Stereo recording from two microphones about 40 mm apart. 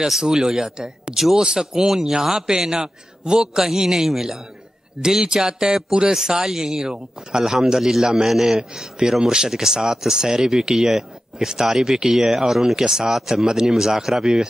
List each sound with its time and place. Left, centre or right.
0.2 s speech: centre